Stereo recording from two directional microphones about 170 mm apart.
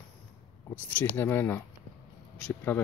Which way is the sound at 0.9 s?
10° left (ahead or behind).